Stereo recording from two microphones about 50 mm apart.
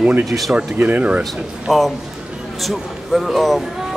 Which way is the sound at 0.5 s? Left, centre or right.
Right.